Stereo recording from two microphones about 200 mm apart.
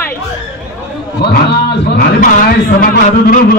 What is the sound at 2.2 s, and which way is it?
A man's voice, 40° left (ahead or behind).